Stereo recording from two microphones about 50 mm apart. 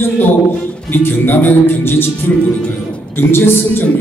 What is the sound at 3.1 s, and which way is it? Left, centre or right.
Speech, left.